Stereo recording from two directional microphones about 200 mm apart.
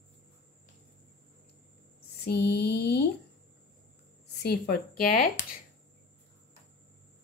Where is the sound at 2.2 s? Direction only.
55° left (ahead or behind).